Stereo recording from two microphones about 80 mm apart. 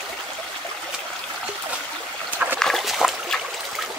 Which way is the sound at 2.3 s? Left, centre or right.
Right.